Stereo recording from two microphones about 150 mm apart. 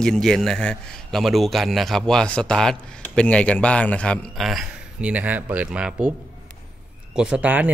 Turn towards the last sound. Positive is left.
turn(degrees=-10)  # may be behind; listen again after turning